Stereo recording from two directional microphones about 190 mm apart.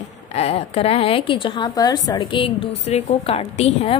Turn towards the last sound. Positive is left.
turn(degrees=35)  # may be behind; listen again after turning